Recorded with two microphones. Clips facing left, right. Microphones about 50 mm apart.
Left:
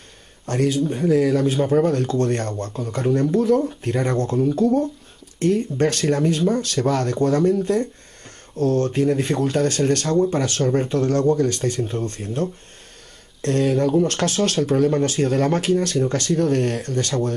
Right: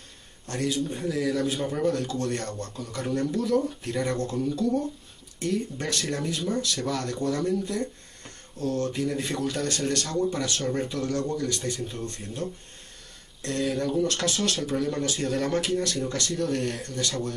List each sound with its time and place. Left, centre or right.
0.5 s speech: left
0.8 s speech: left
1.1 s speech: left
1.5 s speech: left